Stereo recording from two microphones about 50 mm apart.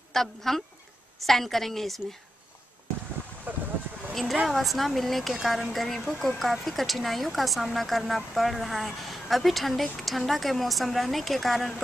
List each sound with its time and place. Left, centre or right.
0.1 s speech: centre
3.5 s boat: right
4.1 s a sound: centre
4.5 s speech: centre